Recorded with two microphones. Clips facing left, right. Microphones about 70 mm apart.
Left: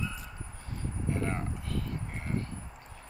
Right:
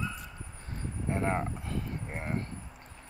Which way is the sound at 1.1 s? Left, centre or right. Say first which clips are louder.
Right 5 dB; right.